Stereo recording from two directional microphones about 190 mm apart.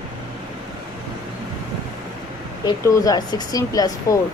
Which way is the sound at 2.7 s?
20° left (ahead or behind).